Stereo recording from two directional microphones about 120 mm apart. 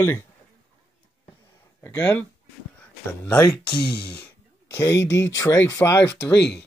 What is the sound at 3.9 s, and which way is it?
Speech, 45° left (ahead or behind).